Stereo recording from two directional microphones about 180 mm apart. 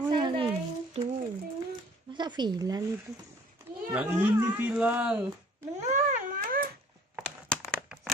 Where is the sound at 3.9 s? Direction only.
10° right (ahead or behind).